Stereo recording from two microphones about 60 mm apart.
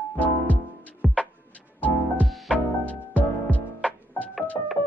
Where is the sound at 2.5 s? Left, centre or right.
Left.